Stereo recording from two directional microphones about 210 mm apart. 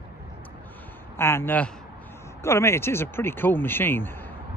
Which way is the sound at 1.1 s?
10° left (ahead or behind).